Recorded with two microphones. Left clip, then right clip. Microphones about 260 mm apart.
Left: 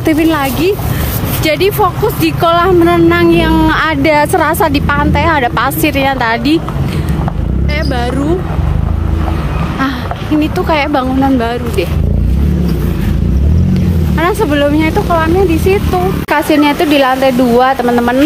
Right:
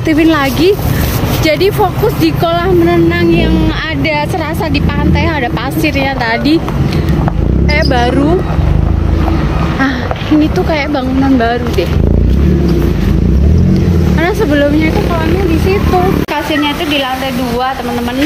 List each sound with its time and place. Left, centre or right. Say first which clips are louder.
0.0 s speech: right 1 dB; centre
14.1 s speech: left 1 dB; centre
16.4 s a woman's voice: left 3 dB; centre